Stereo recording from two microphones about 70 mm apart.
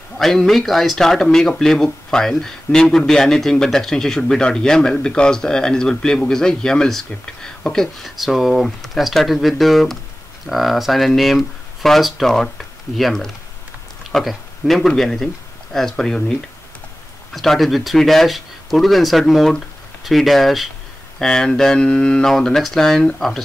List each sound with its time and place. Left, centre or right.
0.2 s speech: centre